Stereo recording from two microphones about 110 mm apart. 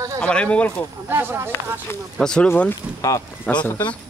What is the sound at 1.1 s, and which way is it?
Speech, 20° right (ahead or behind).